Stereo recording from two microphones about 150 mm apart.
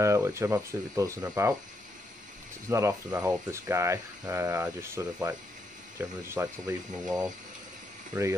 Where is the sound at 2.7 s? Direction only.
20° right (ahead or behind).